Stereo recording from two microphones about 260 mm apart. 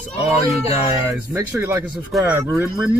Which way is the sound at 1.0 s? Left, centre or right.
Centre.